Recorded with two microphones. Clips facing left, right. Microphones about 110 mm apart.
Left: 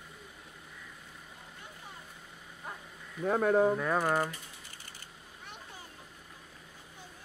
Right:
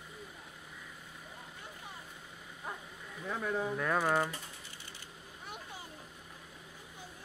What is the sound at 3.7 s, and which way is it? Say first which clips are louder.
Speech: left 1 dB; 10° left (ahead or behind).